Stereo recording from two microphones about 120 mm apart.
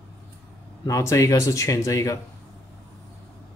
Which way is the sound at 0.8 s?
25° left (ahead or behind).